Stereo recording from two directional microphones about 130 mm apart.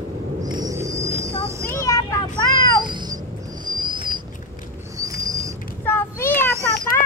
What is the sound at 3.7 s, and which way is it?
Owl, 40° right (ahead or behind).